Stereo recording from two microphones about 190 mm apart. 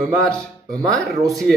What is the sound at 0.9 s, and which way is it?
Speech, centre (ahead or behind).